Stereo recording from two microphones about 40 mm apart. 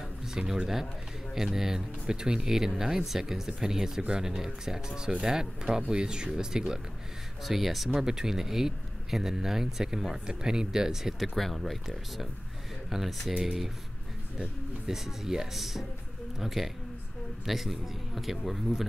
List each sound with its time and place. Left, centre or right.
0.3 s speech: centre
7.4 s speech: centre
8.0 s speech: centre
11.3 s speech: centre
14.9 s speech: centre